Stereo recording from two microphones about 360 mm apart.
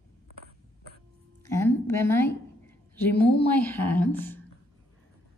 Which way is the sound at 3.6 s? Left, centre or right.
Centre.